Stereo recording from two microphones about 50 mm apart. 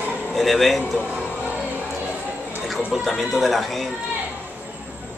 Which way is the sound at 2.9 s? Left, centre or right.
Centre.